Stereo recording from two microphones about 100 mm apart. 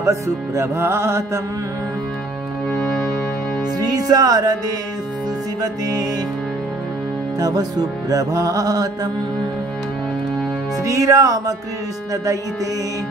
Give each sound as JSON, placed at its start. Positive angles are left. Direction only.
{"t": 0.0, "sound": "music", "side_deg": -30}
{"t": 3.7, "sound": "music", "side_deg": -40}
{"t": 5.6, "sound": "music", "side_deg": -40}
{"t": 7.3, "sound": "music", "side_deg": -40}
{"t": 10.8, "sound": "music", "side_deg": -35}